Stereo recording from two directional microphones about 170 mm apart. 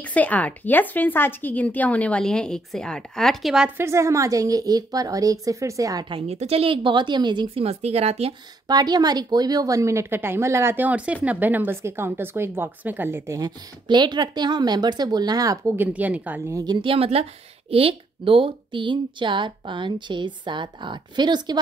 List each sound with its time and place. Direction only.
0.0 s speech: 10° left (ahead or behind); by 8.4 s 35° right (ahead or behind)
8.6 s a woman's voice: 25° right (ahead or behind)
16.5 s speech: 25° right (ahead or behind)